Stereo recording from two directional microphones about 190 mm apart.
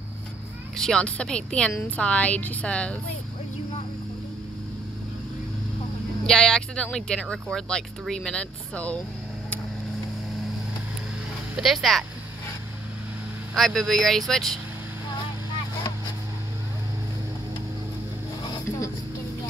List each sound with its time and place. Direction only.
0.7 s speech: 5° left (ahead or behind)
6.2 s speech: 5° left (ahead or behind)
11.5 s speech: centre (ahead or behind)
13.6 s speech: centre (ahead or behind)